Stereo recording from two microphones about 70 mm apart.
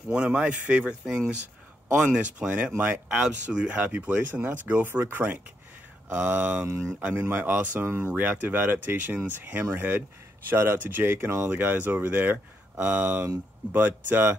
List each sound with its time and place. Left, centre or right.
0.1 s speech: centre
2.0 s speech: centre
7.8 s speech: right
8.2 s speech: right